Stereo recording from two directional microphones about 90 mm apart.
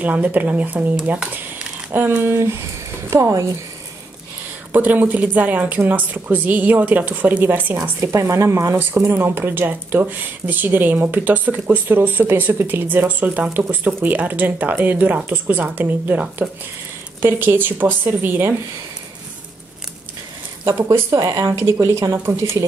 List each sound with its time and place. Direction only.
0.0 s speech: 15° right (ahead or behind); by 3.4 s 35° right (ahead or behind)
4.7 s speech: 20° right (ahead or behind)
8.0 s speech: 35° right (ahead or behind)
20.6 s speech: 35° right (ahead or behind)